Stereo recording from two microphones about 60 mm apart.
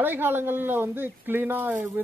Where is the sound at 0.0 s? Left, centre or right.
Right.